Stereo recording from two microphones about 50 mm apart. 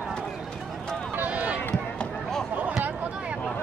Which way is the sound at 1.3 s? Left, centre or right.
Right.